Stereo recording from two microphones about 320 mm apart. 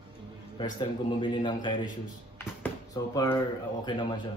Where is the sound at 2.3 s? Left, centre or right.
Centre.